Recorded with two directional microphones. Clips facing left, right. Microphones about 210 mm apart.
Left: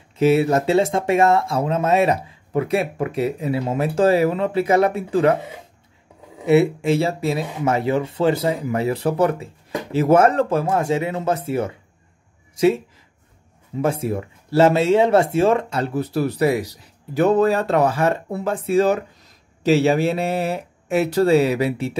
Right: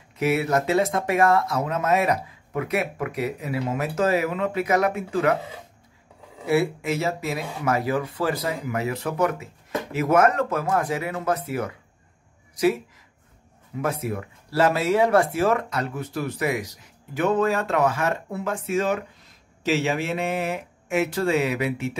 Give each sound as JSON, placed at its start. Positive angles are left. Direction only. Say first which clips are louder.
{"t": 0.2, "sound": "speech", "louder": "left 6 dB", "side_deg": 30}
{"t": 6.4, "sound": "a woman's voice", "louder": "left 6 dB", "side_deg": 25}